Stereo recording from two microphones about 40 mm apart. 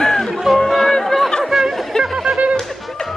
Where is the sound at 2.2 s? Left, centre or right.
Right.